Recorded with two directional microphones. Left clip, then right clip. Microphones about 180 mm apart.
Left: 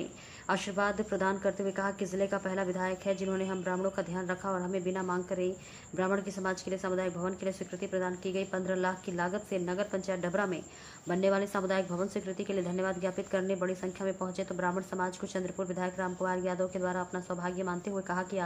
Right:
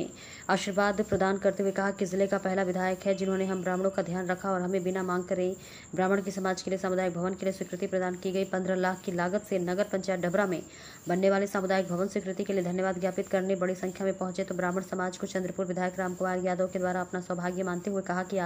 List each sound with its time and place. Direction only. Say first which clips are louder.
0.5 s a woman's voice: right 4 dB; 20° right (ahead or behind)